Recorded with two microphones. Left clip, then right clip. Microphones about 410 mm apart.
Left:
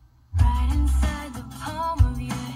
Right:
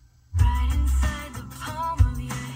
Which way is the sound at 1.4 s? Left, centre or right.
Right.